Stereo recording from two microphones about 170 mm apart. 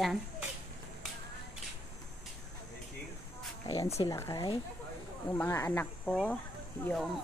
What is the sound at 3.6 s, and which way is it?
Speech, 20° left (ahead or behind).